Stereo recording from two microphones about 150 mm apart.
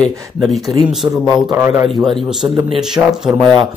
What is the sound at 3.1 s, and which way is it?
Speech, centre (ahead or behind).